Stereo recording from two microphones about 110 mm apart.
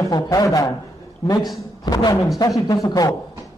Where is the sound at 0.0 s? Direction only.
35° left (ahead or behind).